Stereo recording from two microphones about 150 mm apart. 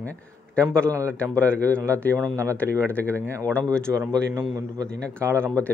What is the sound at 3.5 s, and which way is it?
Speech, 10° left (ahead or behind).